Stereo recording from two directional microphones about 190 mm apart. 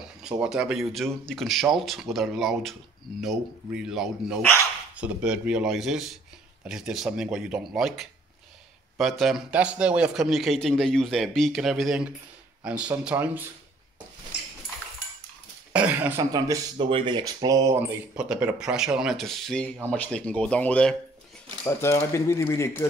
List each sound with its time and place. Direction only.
0.0 s a man's voice: 5° right (ahead or behind)
15.7 s speech: 10° right (ahead or behind)
18.1 s a man's voice: 5° right (ahead or behind); by 22.8 s 15° left (ahead or behind)